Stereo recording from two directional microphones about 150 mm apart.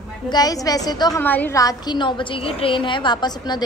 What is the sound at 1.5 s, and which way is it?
A woman's voice, 25° left (ahead or behind).